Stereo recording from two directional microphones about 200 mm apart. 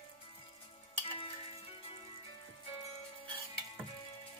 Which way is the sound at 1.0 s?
30° left (ahead or behind).